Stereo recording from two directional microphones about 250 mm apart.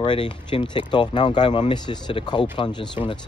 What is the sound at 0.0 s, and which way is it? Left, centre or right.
Speech, centre.